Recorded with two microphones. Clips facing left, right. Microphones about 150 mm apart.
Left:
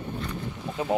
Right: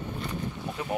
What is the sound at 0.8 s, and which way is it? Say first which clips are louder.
Speech: left 6 dB; 25° left (ahead or behind).